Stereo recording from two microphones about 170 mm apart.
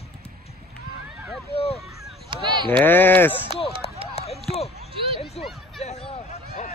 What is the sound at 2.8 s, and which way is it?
Bleat, 10° left (ahead or behind).